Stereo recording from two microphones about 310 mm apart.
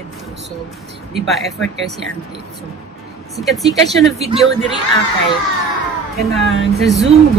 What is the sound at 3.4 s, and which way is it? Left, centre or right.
Speech, centre.